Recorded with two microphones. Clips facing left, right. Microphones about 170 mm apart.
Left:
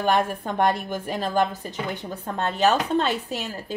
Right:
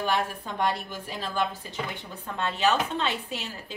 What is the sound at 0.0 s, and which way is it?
A woman's voice, 50° left (ahead or behind).